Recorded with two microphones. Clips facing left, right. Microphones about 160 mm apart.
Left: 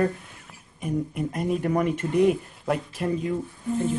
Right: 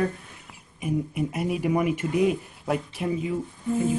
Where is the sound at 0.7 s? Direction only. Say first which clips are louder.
Right 1 dB; 5° right (ahead or behind).